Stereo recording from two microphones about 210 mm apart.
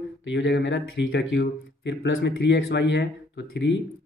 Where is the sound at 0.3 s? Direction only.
60° left (ahead or behind).